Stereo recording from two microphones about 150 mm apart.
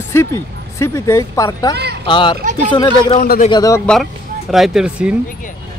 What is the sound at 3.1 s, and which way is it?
Speech, 80° left.